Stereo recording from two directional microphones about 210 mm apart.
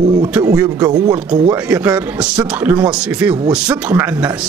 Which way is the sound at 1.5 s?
5° right (ahead or behind).